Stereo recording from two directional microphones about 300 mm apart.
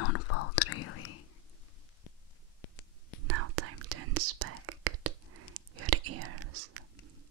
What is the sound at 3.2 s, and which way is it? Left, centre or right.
Whispering, right.